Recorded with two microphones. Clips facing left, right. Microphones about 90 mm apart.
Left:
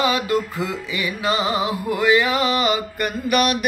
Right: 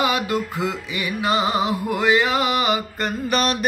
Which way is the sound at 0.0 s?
20° right (ahead or behind).